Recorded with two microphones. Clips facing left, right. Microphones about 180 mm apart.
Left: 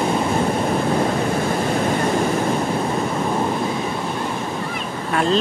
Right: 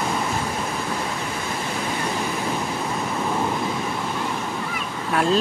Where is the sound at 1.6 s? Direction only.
45° left (ahead or behind).